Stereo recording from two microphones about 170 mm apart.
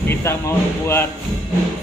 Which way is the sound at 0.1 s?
15° left (ahead or behind).